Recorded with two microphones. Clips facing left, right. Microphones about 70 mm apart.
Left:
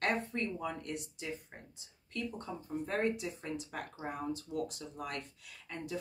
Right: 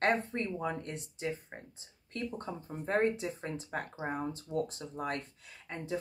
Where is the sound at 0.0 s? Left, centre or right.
Right.